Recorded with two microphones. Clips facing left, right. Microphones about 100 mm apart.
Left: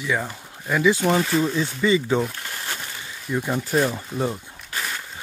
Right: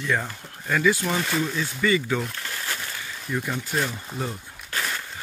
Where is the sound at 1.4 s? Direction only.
25° left (ahead or behind).